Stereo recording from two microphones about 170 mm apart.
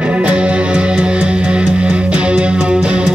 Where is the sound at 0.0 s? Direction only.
5° right (ahead or behind).